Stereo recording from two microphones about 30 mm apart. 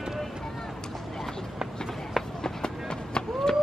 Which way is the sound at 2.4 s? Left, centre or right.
Left.